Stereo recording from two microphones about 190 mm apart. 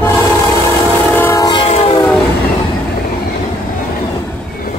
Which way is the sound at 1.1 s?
15° left (ahead or behind).